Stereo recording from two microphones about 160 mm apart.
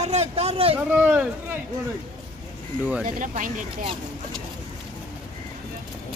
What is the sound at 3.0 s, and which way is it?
Speech, 55° right (ahead or behind).